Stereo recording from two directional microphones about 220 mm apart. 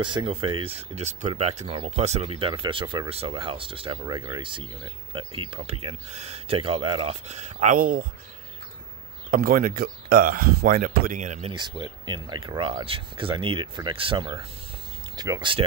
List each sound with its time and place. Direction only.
0.0 s speech: 20° right (ahead or behind); by 8.1 s 40° right (ahead or behind)
9.3 s speech: 40° right (ahead or behind)
11.5 s speech: 20° right (ahead or behind)